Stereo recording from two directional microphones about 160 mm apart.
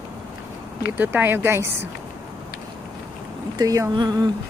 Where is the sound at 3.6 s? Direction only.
20° right (ahead or behind).